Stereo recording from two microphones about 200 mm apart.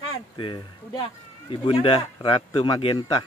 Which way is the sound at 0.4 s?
25° left (ahead or behind).